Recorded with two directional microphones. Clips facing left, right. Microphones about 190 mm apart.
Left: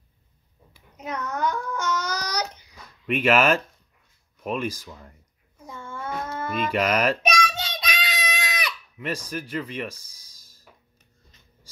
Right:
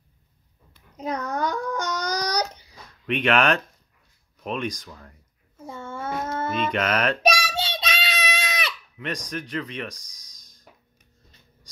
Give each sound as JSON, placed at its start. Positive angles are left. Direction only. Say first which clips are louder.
{"t": 0.9, "sound": "babbling", "louder": "right 3 dB", "side_deg": -35}
{"t": 3.1, "sound": "speech", "louder": "left 1 dB", "side_deg": 5}
{"t": 5.7, "sound": "a sound", "louder": "right 2 dB", "side_deg": -25}
{"t": 6.7, "sound": "music", "louder": "left 4 dB", "side_deg": 5}
{"t": 7.2, "sound": "child singing", "louder": "right 2 dB", "side_deg": -30}
{"t": 8.9, "sound": "speech", "louder": "left 2 dB", "side_deg": 5}
{"t": 10.4, "sound": "a sound", "louder": "right 3 dB", "side_deg": 5}